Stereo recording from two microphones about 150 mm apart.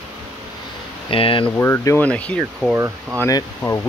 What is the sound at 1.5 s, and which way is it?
Speech, 15° left (ahead or behind).